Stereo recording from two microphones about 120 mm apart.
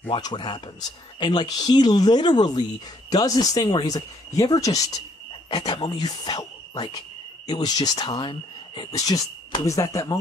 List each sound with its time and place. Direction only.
0.1 s speech: 40° left (ahead or behind)
7.4 s cricket: 35° left (ahead or behind)
8.9 s speech: 30° left (ahead or behind)